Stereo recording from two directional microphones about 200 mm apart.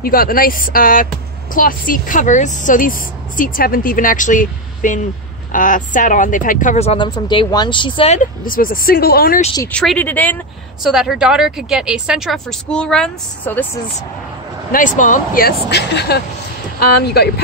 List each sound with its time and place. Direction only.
0.0 s a woman's voice: 45° left (ahead or behind)
9.6 s speech: 5° left (ahead or behind)
10.9 s a woman's voice: centre (ahead or behind)
14.7 s a woman's voice: 40° left (ahead or behind)